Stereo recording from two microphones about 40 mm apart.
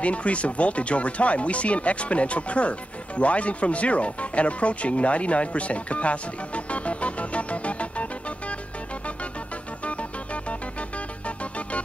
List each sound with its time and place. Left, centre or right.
0.0 s speech: left
9.8 s music: left